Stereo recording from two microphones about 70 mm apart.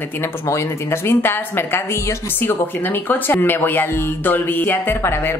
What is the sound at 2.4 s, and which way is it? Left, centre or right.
Speech, left.